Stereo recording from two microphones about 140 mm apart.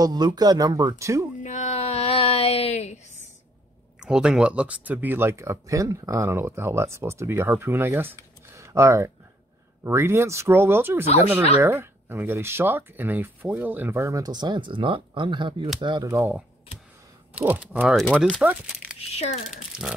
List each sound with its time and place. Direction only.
0.0 s speech: 30° right (ahead or behind)
1.4 s a sound: 60° left (ahead or behind)
4.0 s speech: 5° right (ahead or behind); by 16.1 s 35° right (ahead or behind)
16.1 s speech: 20° right (ahead or behind)
17.9 s speech: 5° left (ahead or behind)
18.3 s speech: 10° right (ahead or behind)
18.9 s a child's voice: 50° left (ahead or behind)
19.5 s speech: 5° right (ahead or behind)